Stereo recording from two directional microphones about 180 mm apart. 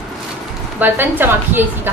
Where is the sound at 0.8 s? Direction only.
10° right (ahead or behind).